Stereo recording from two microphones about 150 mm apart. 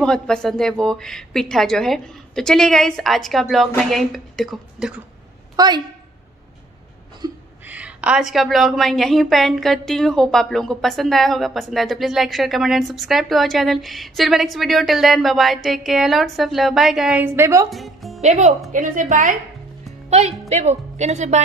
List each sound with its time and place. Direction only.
0.0 s a woman's voice: 5° left (ahead or behind)
5.6 s a woman's voice: 25° right (ahead or behind)
7.2 s a sound: 25° right (ahead or behind)
7.6 s a woman's voice: 10° right (ahead or behind)
17.2 s a woman's voice: 15° right (ahead or behind)
17.6 s music: centre (ahead or behind)
18.2 s speech: 50° right (ahead or behind)
18.7 s a woman's voice: 60° right (ahead or behind)
20.1 s a woman's voice: 45° right (ahead or behind)